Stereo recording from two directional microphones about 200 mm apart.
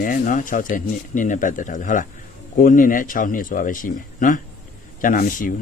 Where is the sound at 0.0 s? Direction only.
40° left (ahead or behind).